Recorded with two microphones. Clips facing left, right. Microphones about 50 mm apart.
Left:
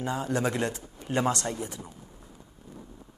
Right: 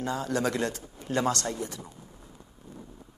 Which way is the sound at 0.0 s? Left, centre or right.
Left.